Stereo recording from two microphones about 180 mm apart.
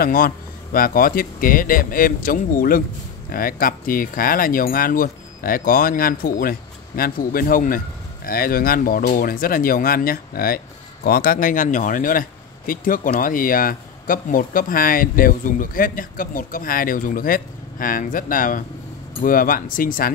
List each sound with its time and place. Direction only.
0.0 s speech: 55° left (ahead or behind)